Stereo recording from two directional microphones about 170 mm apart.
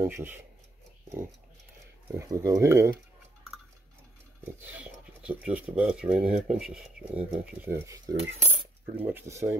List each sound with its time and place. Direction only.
0.0 s speech: 10° right (ahead or behind)
2.1 s speech: 15° right (ahead or behind)
5.2 s speech: 10° right (ahead or behind)
8.2 s cutlery: 35° right (ahead or behind)
9.0 s speech: 15° right (ahead or behind)